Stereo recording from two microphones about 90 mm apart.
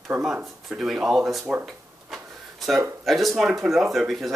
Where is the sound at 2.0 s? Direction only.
Centre (ahead or behind).